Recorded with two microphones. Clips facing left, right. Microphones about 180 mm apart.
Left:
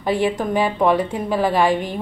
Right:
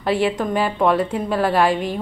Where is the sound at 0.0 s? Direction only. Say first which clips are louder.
Even; centre (ahead or behind).